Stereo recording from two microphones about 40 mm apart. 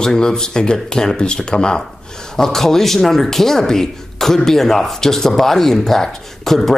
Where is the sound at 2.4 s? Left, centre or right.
Centre.